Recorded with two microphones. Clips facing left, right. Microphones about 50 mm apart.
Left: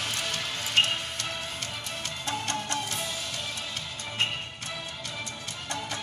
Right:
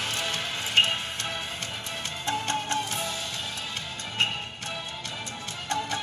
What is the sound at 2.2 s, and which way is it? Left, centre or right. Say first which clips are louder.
Music: right 4 dB; right.